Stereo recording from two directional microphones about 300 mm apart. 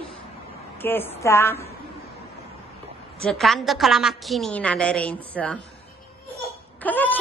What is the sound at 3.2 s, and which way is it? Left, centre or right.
A woman's voice, centre.